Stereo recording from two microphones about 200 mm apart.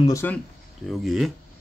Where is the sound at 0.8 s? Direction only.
Centre (ahead or behind).